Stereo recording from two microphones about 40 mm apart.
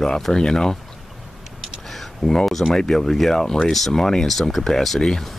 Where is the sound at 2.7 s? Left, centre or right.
Centre.